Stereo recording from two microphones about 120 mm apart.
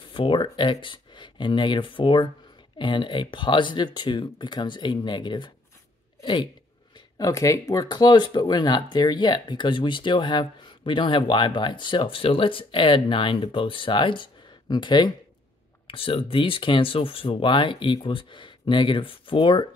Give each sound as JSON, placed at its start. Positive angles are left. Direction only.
{"t": 0.1, "sound": "speech", "side_deg": 45}
{"t": 7.2, "sound": "speech", "side_deg": 30}
{"t": 15.9, "sound": "speech", "side_deg": 50}